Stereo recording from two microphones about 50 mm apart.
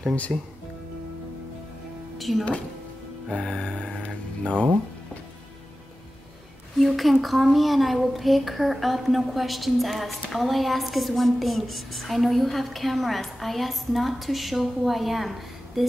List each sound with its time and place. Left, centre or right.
0.3 s speech: centre
2.1 s music: centre
3.3 s music: centre
6.8 s speech: centre